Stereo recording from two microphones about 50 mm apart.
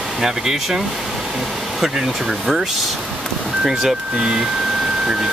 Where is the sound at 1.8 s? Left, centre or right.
Centre.